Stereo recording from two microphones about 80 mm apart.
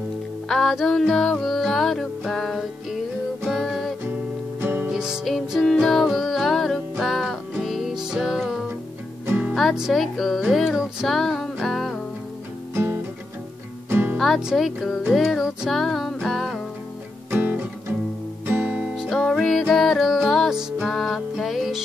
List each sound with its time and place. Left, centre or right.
0.5 s music: centre
4.6 s music: right
4.9 s music: centre
5.2 s music: centre
9.2 s music: right
9.5 s music: centre
13.8 s music: right
14.1 s speech: centre
14.4 s music: centre
17.3 s music: right
18.9 s music: centre